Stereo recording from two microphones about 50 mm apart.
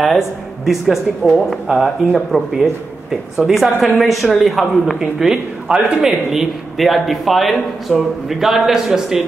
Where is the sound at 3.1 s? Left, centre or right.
Centre.